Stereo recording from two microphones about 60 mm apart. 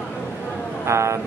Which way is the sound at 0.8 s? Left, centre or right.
Right.